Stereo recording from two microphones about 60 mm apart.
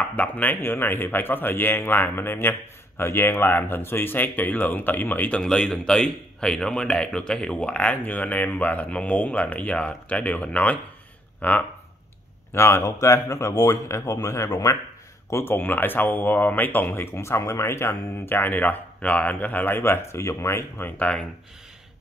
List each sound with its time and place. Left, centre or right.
0.1 s speech: left
5.4 s a man's voice: centre; by 11.6 s left
12.5 s speech: left
12.8 s a man's voice: left
15.2 s speech: left
15.5 s speech: left
17.1 s speech: left
19.8 s speech: left
21.0 s speech: centre